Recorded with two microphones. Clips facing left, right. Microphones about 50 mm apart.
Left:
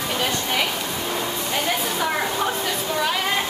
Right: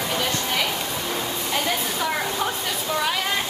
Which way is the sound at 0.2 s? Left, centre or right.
Centre.